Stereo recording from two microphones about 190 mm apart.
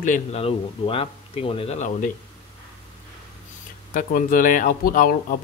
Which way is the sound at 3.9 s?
45° left (ahead or behind).